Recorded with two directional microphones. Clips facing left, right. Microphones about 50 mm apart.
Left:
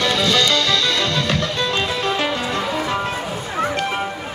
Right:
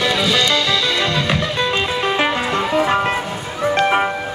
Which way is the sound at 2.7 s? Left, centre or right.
Right.